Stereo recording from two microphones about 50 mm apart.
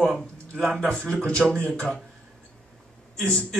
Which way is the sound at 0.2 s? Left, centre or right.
Centre.